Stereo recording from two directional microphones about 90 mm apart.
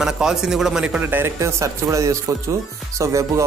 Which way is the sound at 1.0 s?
25° right (ahead or behind).